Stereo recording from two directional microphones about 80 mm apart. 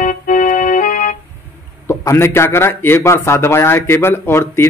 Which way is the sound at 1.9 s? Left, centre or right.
Left.